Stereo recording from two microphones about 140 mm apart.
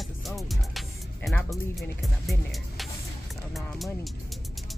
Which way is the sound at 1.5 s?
Centre (ahead or behind).